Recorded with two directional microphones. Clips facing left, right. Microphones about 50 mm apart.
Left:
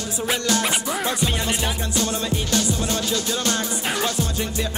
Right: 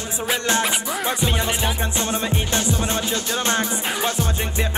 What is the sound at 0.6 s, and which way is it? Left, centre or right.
Music, centre.